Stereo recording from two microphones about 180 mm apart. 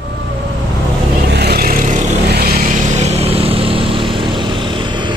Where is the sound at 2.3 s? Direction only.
60° right (ahead or behind).